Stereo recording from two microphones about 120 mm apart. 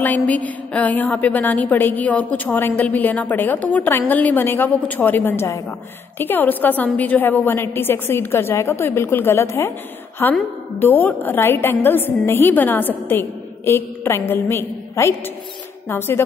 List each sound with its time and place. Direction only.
0.0 s a woman's voice: 15° left (ahead or behind)